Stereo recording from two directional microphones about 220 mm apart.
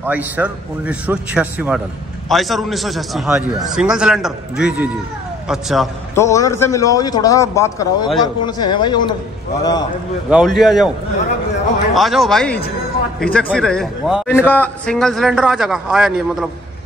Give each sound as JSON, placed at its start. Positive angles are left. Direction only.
{"t": 0.0, "sound": "a man's voice", "side_deg": -5}
{"t": 6.1, "sound": "a man's voice", "side_deg": 15}
{"t": 10.3, "sound": "a man's voice", "side_deg": 0}
{"t": 11.9, "sound": "a man's voice", "side_deg": 0}